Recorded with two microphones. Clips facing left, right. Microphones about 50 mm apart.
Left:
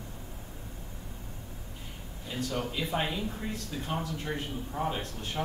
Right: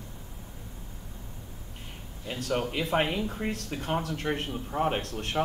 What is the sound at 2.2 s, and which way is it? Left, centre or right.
A man's voice, right.